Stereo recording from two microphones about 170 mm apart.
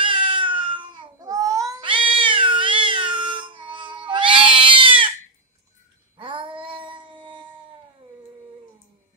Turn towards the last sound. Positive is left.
turn(degrees=-30)  # may be behind; listen again after turning